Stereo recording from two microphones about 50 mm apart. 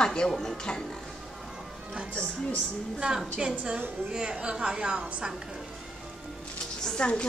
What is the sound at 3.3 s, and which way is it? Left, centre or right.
A woman's voice, right.